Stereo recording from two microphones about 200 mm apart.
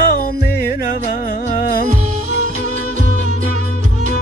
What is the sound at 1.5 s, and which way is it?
Music, 45° left (ahead or behind).